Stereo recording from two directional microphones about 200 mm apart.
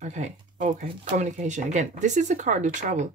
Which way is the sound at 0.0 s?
35° right (ahead or behind).